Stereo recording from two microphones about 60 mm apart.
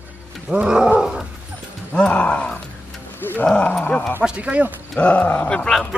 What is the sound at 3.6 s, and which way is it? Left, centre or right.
Speech, left.